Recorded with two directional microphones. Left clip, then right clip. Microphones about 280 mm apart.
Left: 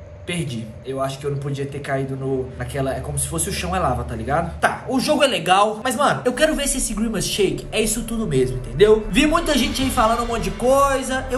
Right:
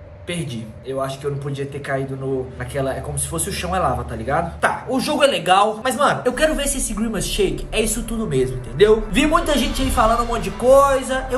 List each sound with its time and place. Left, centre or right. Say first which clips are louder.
0.9 s a man's voice: even; centre